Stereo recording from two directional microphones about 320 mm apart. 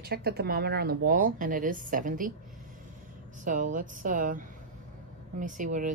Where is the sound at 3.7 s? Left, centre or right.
Right.